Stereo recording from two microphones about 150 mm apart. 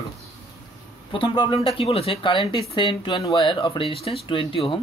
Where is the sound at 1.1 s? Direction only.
35° left (ahead or behind).